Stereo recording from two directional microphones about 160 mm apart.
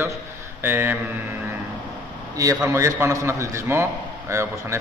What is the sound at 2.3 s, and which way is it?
A man's voice, 20° right (ahead or behind).